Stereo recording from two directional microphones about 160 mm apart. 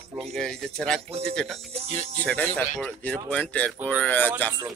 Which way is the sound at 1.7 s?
40° right (ahead or behind).